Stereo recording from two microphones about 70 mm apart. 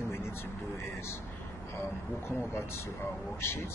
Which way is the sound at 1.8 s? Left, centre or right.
Left.